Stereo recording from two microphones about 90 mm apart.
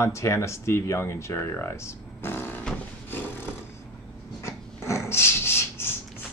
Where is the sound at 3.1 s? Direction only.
25° left (ahead or behind).